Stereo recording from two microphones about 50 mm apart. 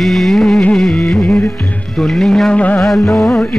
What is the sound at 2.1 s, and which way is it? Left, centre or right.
Music, centre.